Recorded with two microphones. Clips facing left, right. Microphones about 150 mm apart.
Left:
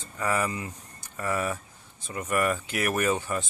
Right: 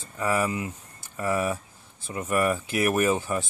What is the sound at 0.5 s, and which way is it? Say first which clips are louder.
Speech: right 4 dB; 20° right (ahead or behind).